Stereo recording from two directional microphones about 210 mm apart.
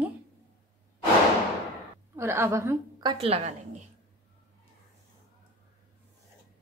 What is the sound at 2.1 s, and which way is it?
A woman's voice, 10° right (ahead or behind).